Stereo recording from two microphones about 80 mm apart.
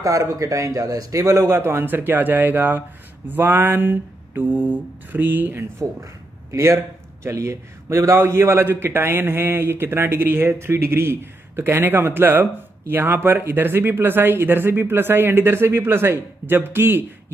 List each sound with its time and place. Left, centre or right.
0.0 s a man's voice: right